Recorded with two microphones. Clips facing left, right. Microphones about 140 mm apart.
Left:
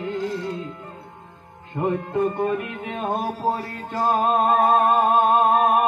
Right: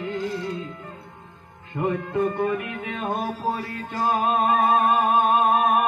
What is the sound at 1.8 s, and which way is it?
Music, 35° left (ahead or behind).